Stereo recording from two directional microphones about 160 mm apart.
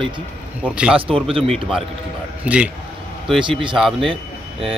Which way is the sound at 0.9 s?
35° right (ahead or behind).